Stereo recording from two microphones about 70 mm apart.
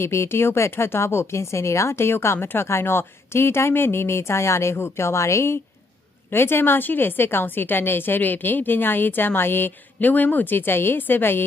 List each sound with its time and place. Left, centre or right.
0.0 s a woman's voice: left